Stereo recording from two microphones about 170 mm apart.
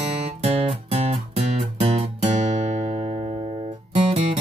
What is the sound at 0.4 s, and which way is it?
Music, 35° right (ahead or behind).